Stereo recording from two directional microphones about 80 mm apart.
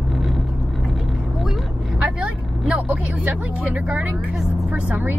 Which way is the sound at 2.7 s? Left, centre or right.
Centre.